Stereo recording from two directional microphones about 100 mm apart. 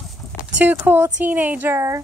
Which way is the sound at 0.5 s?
20° right (ahead or behind).